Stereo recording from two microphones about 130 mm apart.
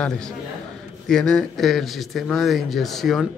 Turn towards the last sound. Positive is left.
turn(degrees=0)  # may be behind; listen again after turning